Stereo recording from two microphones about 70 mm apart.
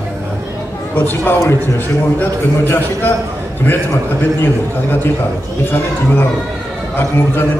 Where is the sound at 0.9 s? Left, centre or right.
Left.